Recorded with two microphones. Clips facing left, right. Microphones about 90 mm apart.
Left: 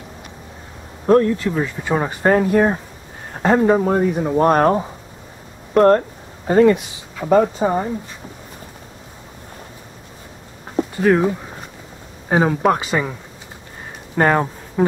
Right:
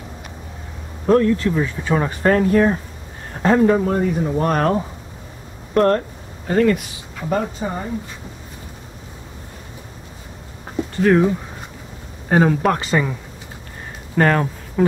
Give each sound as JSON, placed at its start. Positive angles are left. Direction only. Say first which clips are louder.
{"t": 1.0, "sound": "speech", "louder": "left 1 dB", "side_deg": 15}
{"t": 3.7, "sound": "a man's voice", "louder": "left 2 dB", "side_deg": 35}
{"t": 5.9, "sound": "speech", "louder": "left 4 dB", "side_deg": 20}
{"t": 11.0, "sound": "speech", "louder": "right 1 dB", "side_deg": 5}
{"t": 14.1, "sound": "speech", "louder": "left 1 dB", "side_deg": 15}